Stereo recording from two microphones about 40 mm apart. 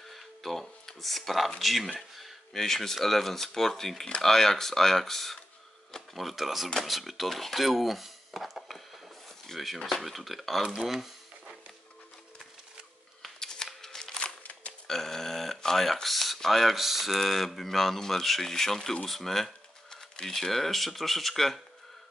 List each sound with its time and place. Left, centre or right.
0.1 s a sound: centre
1.6 s speech: centre
6.8 s dishes: centre
9.5 s speech: centre
10.0 s speech: centre
10.7 s speech: centre
13.4 s scissors: centre
14.4 s music: left
14.7 s a sound: centre
16.3 s speech: centre